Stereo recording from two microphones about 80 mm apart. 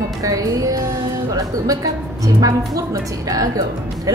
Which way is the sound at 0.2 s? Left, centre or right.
Right.